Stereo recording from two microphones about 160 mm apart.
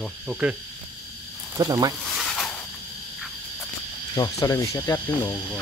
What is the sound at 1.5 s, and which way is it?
Speech, 25° right (ahead or behind).